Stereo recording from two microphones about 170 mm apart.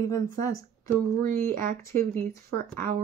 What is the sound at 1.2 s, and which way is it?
Speech, 55° right (ahead or behind).